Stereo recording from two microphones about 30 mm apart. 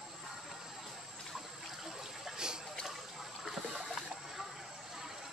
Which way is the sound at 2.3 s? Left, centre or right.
Right.